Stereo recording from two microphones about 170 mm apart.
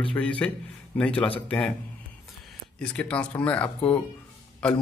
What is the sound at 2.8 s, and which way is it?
A man's voice, 5° left (ahead or behind).